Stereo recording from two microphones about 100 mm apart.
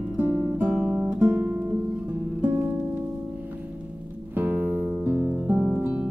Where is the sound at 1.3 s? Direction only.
15° right (ahead or behind).